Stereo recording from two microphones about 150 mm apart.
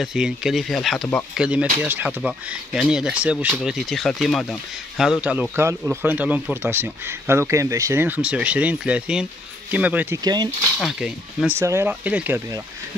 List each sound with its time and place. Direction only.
0.0 s speech: 5° right (ahead or behind)
10.2 s speech: 30° right (ahead or behind)
10.8 s speech: centre (ahead or behind)
11.5 s speech: 15° right (ahead or behind)